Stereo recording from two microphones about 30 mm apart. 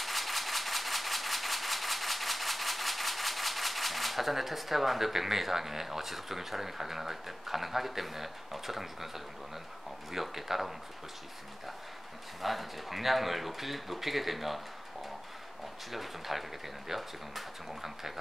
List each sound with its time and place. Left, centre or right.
0.0 s a sound: centre
10.1 s speech: centre
12.4 s speech: centre
15.9 s speech: centre